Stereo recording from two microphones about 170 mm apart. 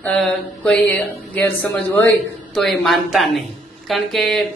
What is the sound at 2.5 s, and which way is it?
A man's voice, centre (ahead or behind).